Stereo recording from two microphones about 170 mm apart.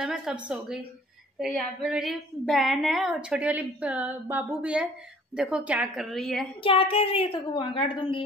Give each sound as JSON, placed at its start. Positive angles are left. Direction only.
{"t": 0.0, "sound": "a woman's voice", "side_deg": -5}
{"t": 1.8, "sound": "a woman's voice", "side_deg": -5}
{"t": 6.6, "sound": "a woman's voice", "side_deg": 30}